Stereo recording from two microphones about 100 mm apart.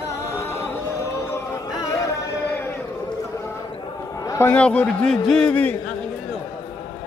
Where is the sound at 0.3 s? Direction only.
30° left (ahead or behind).